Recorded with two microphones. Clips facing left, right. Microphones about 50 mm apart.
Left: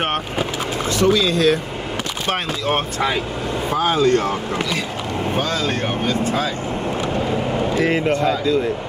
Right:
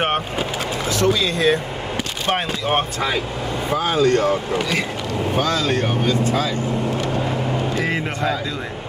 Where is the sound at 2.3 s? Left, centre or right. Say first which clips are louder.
Right 1 dB; centre.